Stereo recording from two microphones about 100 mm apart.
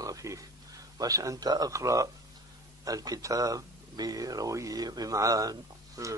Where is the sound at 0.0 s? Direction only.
35° right (ahead or behind).